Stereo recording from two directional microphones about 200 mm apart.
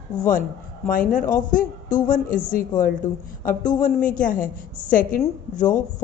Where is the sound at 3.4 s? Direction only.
40° left (ahead or behind).